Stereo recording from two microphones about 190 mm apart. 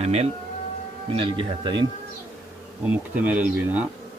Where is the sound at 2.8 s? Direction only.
5° right (ahead or behind).